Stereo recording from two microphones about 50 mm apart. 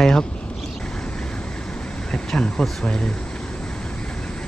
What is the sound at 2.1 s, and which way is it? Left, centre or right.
Speech, left.